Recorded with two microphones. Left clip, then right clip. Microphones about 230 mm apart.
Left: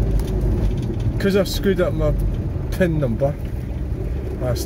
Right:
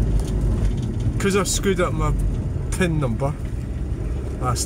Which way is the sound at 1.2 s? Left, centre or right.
Centre.